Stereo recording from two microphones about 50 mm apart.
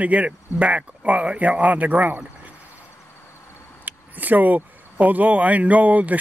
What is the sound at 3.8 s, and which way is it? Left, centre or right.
Speech, right.